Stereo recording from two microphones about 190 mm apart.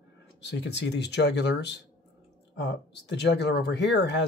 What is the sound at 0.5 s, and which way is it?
Speech, 65° left (ahead or behind).